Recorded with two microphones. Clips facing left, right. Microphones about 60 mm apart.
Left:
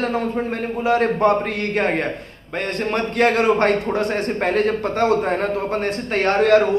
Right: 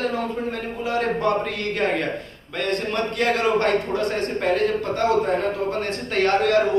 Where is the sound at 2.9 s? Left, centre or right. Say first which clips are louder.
Left 6 dB; left.